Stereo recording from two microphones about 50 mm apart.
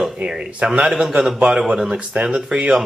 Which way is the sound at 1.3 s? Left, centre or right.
Centre.